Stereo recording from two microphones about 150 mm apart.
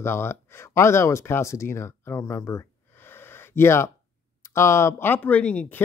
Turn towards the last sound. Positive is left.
turn(degrees=10)  # may be behind; listen again after turning